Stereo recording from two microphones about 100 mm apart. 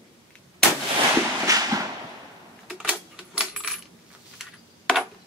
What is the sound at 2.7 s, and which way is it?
Coin, 10° right (ahead or behind).